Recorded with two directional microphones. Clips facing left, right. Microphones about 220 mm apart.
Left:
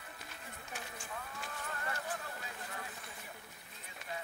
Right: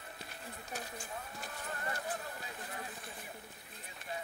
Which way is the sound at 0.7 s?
35° right (ahead or behind).